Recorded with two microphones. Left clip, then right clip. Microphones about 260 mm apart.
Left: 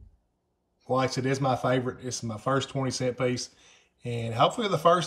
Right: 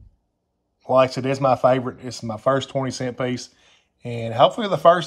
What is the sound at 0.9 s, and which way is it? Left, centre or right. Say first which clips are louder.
Speech: right 9 dB; centre.